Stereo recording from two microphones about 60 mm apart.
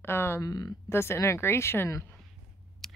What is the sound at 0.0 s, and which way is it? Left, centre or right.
Speech, left.